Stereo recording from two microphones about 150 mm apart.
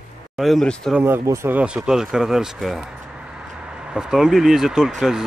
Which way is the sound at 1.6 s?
5° right (ahead or behind).